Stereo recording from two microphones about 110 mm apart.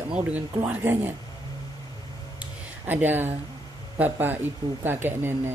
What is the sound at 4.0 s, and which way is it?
Speech, 15° right (ahead or behind).